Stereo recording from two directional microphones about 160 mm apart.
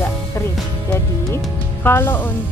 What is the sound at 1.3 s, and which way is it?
Speech, 15° left (ahead or behind).